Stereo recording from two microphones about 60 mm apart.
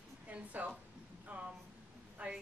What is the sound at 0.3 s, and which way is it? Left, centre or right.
Speech, right.